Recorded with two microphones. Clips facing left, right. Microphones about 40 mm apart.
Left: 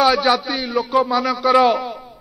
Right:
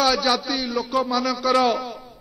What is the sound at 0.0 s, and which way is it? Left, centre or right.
A man's voice, left.